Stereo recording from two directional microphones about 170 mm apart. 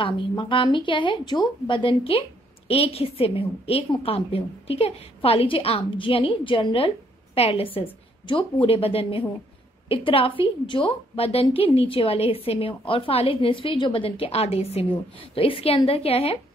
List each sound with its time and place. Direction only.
0.0 s a woman's voice: 30° left (ahead or behind)